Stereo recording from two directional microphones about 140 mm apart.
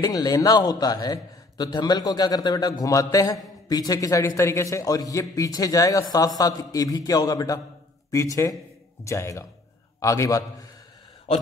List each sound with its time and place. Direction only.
0.0 s a man's voice: 25° left (ahead or behind)